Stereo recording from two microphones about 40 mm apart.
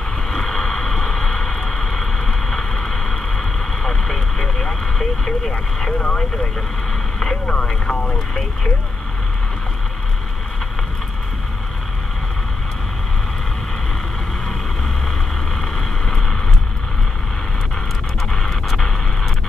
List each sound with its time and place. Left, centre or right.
0.3 s vehicle: centre
5.8 s speech: left
7.2 s vehicle: centre
15.6 s vehicle: centre
18.3 s pant: centre